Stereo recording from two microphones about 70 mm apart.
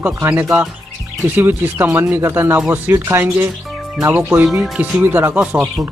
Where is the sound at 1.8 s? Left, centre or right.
Right.